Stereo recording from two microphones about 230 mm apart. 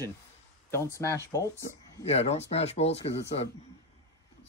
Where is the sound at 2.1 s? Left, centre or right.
Left.